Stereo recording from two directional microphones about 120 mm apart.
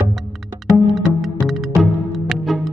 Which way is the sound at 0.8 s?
Centre (ahead or behind).